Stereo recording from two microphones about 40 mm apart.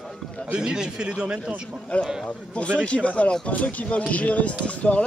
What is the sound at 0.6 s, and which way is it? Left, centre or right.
Speech, centre.